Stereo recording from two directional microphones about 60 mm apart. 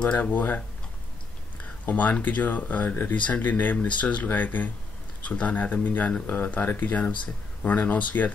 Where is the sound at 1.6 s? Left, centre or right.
Left.